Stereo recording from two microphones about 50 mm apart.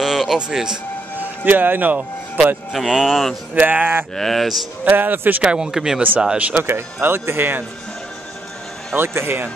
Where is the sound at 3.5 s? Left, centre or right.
Right.